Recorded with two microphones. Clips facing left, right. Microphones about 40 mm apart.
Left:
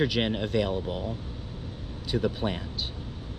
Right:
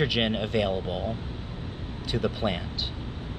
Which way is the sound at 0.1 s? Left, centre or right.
Right.